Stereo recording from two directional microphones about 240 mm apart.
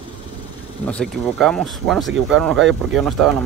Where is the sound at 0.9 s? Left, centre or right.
Centre.